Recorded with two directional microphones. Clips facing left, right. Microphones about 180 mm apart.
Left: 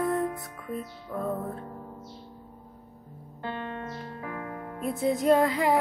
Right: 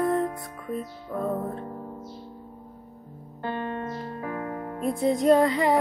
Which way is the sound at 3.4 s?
45° right (ahead or behind).